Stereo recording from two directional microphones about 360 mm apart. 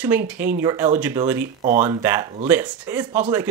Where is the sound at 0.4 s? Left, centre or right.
Centre.